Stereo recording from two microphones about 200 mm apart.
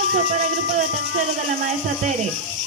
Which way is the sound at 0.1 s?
40° right (ahead or behind).